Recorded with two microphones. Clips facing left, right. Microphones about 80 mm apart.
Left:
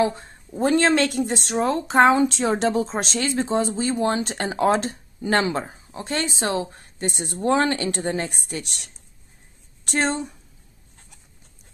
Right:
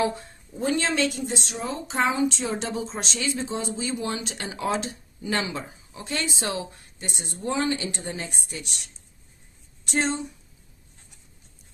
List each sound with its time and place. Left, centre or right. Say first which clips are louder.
0.6 s speech: left 6 dB; left